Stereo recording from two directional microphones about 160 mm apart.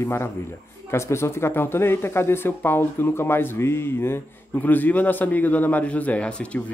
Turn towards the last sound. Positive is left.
turn(degrees=5)  # may be behind; listen again after turning